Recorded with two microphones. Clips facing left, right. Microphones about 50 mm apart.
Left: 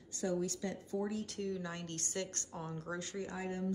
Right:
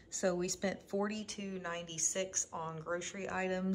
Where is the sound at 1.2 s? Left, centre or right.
Right.